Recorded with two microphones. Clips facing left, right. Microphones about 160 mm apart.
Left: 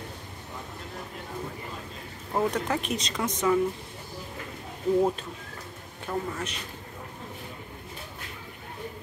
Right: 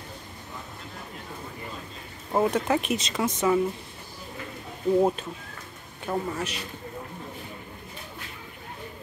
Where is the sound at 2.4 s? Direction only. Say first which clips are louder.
Right 3 dB; 5° right (ahead or behind).